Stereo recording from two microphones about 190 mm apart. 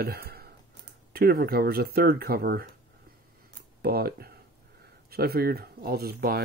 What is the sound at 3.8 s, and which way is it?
Speech, 55° right (ahead or behind).